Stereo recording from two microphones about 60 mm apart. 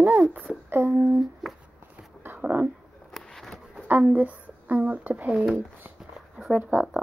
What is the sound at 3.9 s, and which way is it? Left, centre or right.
Speech, right.